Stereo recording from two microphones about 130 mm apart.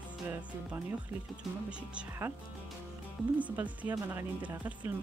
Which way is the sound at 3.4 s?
10° right (ahead or behind).